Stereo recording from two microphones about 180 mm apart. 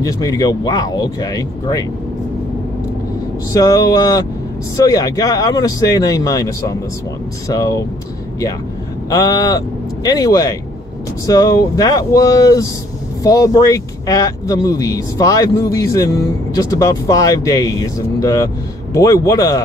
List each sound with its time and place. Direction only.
0.0 s speech: 20° left (ahead or behind)
3.5 s speech: 20° left (ahead or behind)
9.1 s speech: 20° left (ahead or behind)